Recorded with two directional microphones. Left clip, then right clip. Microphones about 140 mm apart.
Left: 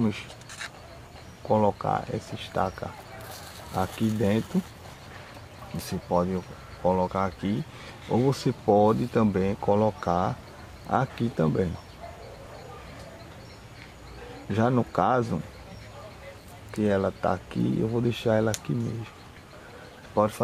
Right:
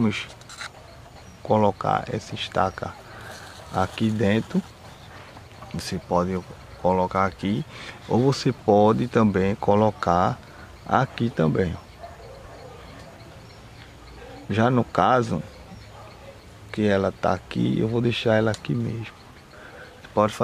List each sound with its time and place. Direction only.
0.0 s speech: 30° right (ahead or behind)
1.5 s speech: 30° right (ahead or behind)
5.8 s speech: 25° right (ahead or behind)
14.5 s speech: 25° right (ahead or behind)
16.7 s speech: 30° right (ahead or behind)
20.2 s speech: 25° right (ahead or behind)